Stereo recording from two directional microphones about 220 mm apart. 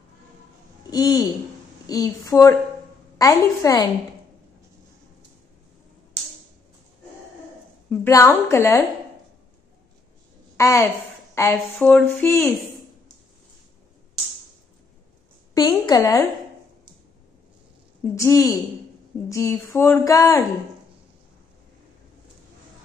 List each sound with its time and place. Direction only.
0.8 s speech: 15° left (ahead or behind)
7.9 s a woman's voice: 10° left (ahead or behind)
10.6 s speech: 15° left (ahead or behind)
15.5 s speech: 20° left (ahead or behind)
18.1 s speech: 15° left (ahead or behind)